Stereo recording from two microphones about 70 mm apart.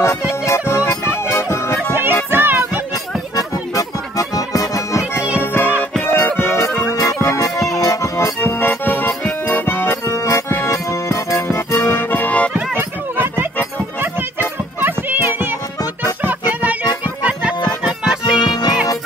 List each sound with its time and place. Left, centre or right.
0.5 s music: left
2.3 s music: right
3.3 s music: left
5.4 s music: left
7.5 s music: centre
7.8 s music: left
8.4 s accordion: left
9.5 s music: left
11.4 s music: left
12.7 s a sound: right
13.9 s music: right; by 18.5 s centre
18.5 s music: left